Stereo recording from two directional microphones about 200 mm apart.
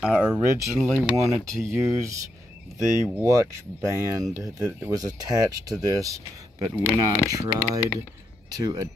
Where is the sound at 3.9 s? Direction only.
15° right (ahead or behind).